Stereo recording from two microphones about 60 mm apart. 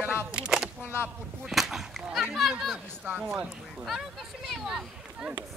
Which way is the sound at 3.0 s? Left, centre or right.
Right.